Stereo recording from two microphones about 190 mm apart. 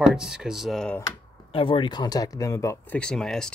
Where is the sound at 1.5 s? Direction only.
30° left (ahead or behind).